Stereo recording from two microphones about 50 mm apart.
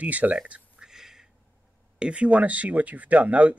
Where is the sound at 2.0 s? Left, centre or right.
Right.